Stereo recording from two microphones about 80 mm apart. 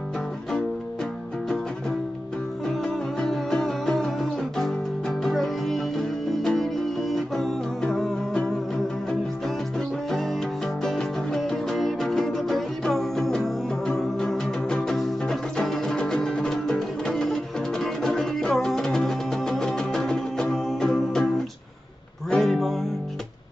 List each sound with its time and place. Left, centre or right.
2.6 s music: centre
9.8 s music: centre
22.3 s music: centre